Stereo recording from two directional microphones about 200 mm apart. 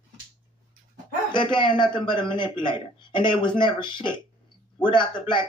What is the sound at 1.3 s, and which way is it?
A woman's voice, 25° left (ahead or behind).